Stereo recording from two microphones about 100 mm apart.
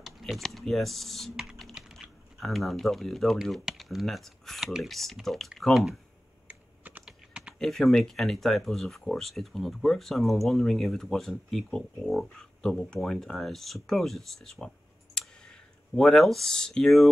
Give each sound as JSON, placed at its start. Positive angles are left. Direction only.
{"t": 0.0, "sound": "speech", "side_deg": 0}
{"t": 6.4, "sound": "computer keyboard", "side_deg": -15}
{"t": 7.1, "sound": "typing", "side_deg": -10}
{"t": 7.5, "sound": "speech", "side_deg": 5}
{"t": 15.2, "sound": "clicking", "side_deg": 5}
{"t": 16.0, "sound": "speech", "side_deg": 5}